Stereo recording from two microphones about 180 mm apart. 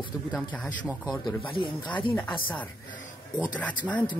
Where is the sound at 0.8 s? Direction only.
Centre (ahead or behind).